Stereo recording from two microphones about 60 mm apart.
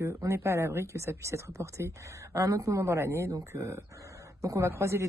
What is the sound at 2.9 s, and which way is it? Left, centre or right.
A woman's voice, right.